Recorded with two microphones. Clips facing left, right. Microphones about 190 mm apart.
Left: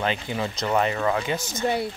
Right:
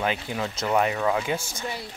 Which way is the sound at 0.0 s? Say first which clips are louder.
Left 1 dB; 5° right (ahead or behind).